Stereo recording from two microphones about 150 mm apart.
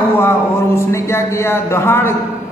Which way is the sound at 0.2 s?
15° left (ahead or behind).